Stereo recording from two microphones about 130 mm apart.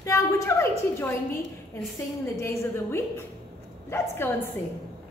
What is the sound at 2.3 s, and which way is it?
A woman's voice, 20° left (ahead or behind).